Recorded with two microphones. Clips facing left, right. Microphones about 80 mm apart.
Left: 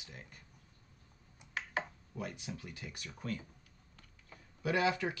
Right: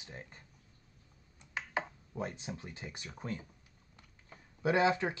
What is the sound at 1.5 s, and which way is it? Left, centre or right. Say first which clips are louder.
Speech: right 1 dB; right.